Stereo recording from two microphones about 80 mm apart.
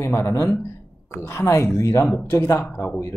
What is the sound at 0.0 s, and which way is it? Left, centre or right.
Speech, left.